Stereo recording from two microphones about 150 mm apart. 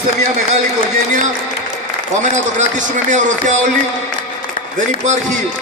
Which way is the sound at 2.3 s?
55° right (ahead or behind).